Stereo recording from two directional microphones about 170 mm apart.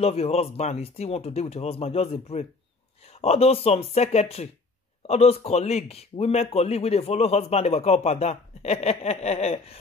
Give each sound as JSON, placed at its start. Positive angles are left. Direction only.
{"t": 0.0, "sound": "a man's voice", "side_deg": 35}